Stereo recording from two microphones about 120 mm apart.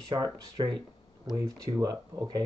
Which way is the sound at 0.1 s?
35° right (ahead or behind).